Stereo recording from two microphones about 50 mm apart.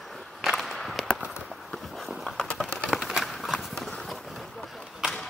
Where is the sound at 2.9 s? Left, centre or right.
Centre.